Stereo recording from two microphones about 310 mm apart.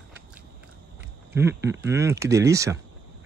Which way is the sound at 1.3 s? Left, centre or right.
Centre.